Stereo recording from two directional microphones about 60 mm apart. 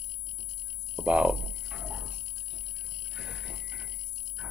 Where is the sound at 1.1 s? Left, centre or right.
Centre.